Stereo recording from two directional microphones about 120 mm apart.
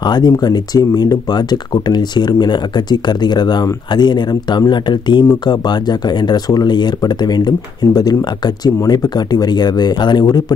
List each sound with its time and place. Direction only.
0.0 s speech: 35° left (ahead or behind)